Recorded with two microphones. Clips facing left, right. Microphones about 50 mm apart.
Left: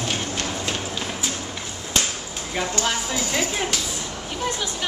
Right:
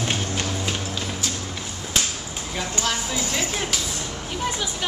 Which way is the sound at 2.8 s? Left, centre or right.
Centre.